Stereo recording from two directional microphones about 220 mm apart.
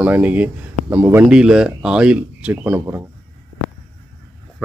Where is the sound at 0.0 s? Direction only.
5° right (ahead or behind).